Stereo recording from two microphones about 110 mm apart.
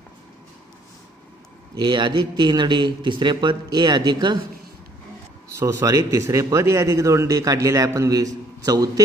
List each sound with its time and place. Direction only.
1.8 s a man's voice: 45° right (ahead or behind)
5.6 s speech: 25° right (ahead or behind)